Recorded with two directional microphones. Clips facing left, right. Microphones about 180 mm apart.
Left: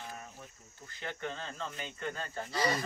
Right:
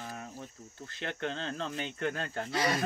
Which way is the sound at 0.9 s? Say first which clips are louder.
Right 4 dB; 75° right (ahead or behind).